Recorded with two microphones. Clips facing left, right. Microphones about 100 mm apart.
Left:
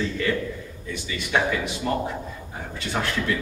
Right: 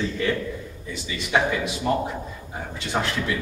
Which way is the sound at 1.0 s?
15° right (ahead or behind).